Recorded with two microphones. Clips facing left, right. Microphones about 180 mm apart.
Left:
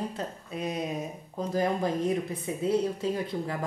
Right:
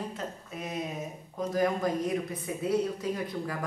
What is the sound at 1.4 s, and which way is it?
Speech, 30° left (ahead or behind).